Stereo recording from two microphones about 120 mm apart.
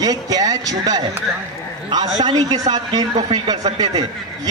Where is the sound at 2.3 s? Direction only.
35° right (ahead or behind).